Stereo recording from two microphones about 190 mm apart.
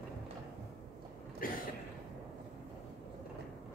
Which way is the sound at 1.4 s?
45° left (ahead or behind).